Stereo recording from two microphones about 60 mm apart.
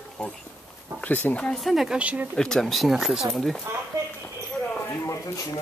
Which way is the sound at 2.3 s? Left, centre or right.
Centre.